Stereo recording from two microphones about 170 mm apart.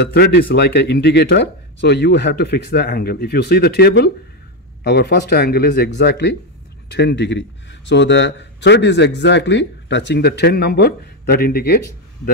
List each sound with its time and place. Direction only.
0.0 s a man's voice: 70° left (ahead or behind)